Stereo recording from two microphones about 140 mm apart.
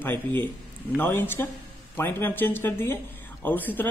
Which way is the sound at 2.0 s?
15° left (ahead or behind).